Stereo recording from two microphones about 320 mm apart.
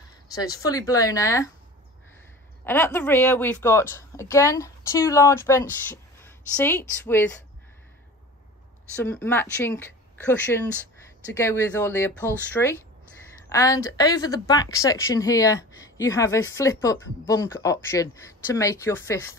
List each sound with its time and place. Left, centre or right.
0.3 s speech: centre
2.6 s speech: centre
8.9 s speech: centre